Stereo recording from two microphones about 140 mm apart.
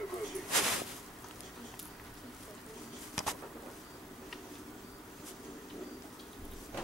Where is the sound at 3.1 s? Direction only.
Centre (ahead or behind).